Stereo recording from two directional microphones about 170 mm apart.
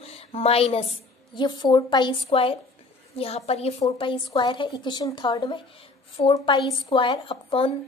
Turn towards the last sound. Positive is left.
turn(degrees=30)  # may be behind; listen again after turning